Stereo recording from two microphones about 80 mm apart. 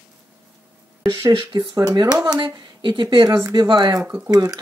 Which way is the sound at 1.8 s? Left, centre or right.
Right.